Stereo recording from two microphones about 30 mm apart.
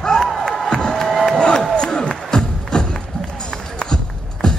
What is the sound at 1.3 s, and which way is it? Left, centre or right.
Music, left.